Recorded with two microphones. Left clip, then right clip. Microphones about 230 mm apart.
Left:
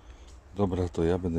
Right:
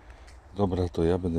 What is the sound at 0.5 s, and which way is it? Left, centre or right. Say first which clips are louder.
Speech: right 1 dB; centre.